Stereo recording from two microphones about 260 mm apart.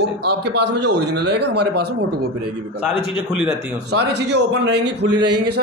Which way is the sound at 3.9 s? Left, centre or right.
Right.